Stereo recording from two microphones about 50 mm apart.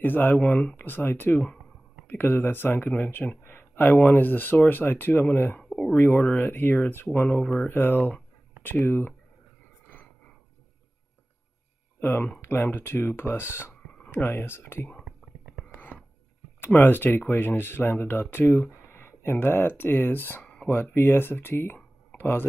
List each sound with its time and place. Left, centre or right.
0.0 s speech: left
0.4 s speech: left
0.8 s speech: left
5.6 s a sound: centre
5.9 s speech: left
6.2 s speech: left
6.5 s speech: left
7.2 s speech: left
7.6 s speech: left
12.0 s speech: left
15.0 s whispering: right
16.6 s speech: left
21.7 s a sound: left